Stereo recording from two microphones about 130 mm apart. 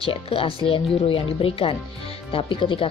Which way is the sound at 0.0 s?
45° left (ahead or behind).